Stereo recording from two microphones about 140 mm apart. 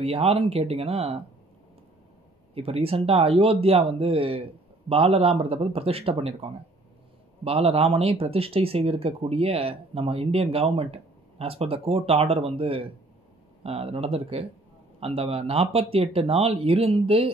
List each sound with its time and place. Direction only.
0.0 s speech: 45° right (ahead or behind)
2.5 s speech: 45° right (ahead or behind)